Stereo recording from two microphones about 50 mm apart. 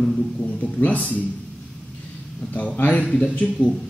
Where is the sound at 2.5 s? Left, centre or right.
Left.